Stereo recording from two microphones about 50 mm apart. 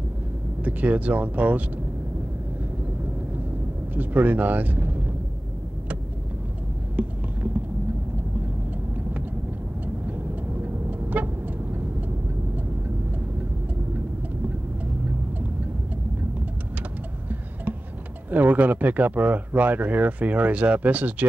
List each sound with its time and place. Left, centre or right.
0.7 s speech: right
3.9 s speech: right
7.0 s a sound: right
10.6 s vehicle: right
18.3 s speech: right